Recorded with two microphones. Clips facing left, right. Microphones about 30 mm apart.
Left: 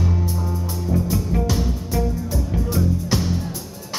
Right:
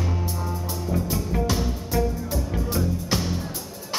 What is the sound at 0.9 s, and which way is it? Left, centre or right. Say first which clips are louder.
Music: left 4 dB; centre.